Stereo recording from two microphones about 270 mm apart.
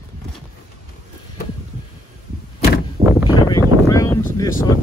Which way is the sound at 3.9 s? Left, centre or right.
Centre.